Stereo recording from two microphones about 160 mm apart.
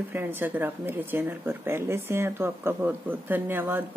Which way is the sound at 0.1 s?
15° right (ahead or behind).